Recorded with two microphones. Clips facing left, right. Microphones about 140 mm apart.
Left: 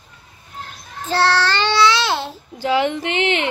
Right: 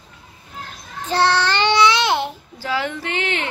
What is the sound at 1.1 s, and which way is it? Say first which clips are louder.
Child singing: even; 15° right (ahead or behind).